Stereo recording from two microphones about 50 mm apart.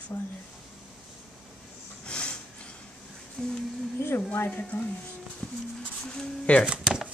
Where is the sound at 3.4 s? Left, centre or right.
Left.